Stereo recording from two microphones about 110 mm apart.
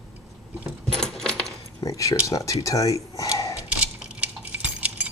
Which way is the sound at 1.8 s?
30° left (ahead or behind).